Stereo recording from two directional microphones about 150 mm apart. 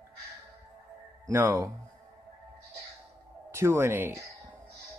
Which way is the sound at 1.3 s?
15° right (ahead or behind).